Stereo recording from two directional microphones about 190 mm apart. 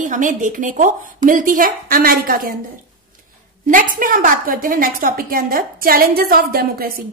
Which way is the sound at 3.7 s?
45° right (ahead or behind).